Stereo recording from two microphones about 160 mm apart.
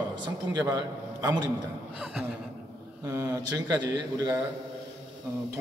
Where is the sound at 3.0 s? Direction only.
20° right (ahead or behind).